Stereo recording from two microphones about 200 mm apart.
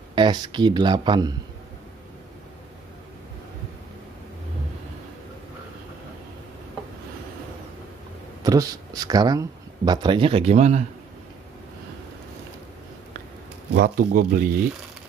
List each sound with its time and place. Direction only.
0.1 s speech: 25° right (ahead or behind)
8.5 s speech: 15° right (ahead or behind); by 10.9 s 35° right (ahead or behind)
13.7 s speech: 50° right (ahead or behind)